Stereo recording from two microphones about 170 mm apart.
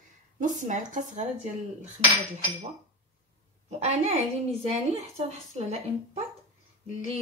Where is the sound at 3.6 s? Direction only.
40° right (ahead or behind).